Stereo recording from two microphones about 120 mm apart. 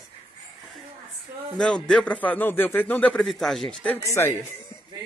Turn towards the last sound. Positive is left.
turn(degrees=20)  # may be behind; listen again after turning